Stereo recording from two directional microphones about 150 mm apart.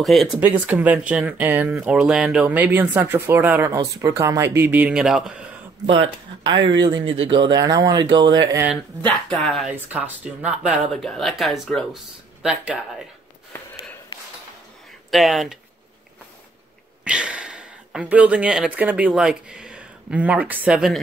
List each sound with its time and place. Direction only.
0.0 s speech: centre (ahead or behind)
3.7 s speech: 20° right (ahead or behind); by 5.5 s 5° right (ahead or behind)
5.9 s speech: 30° right (ahead or behind)
9.3 s speech: 5° left (ahead or behind)
9.7 s speech: 10° right (ahead or behind)
15.0 s speech: centre (ahead or behind)
17.0 s speech: 5° right (ahead or behind)